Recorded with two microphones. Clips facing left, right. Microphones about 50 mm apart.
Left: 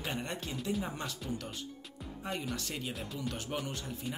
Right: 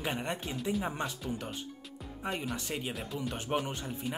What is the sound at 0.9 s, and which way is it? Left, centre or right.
Speech, right.